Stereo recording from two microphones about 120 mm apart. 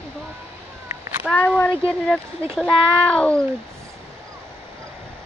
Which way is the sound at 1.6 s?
10° left (ahead or behind).